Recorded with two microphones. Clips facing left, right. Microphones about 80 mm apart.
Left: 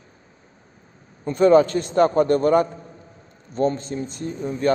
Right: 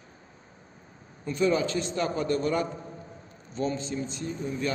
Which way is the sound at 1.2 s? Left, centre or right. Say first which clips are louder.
Left 10 dB; left.